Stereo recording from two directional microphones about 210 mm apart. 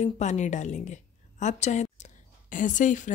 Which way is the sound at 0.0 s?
35° left (ahead or behind).